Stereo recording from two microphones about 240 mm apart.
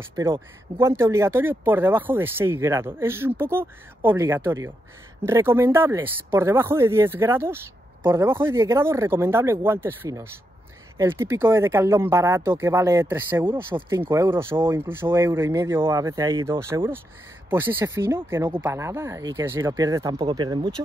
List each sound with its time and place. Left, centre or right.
0.1 s speech: centre